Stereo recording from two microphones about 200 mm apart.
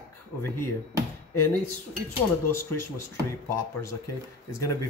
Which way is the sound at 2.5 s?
15° left (ahead or behind).